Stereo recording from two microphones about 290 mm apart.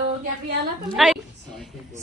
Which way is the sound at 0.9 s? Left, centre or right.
Centre.